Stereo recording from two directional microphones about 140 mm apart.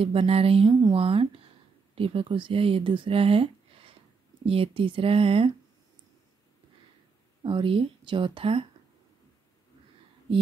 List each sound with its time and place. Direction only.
0.0 s speech: 45° right (ahead or behind)
7.4 s speech: 40° right (ahead or behind)